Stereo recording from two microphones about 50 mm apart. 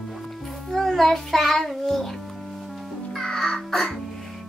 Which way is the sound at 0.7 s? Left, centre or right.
Centre.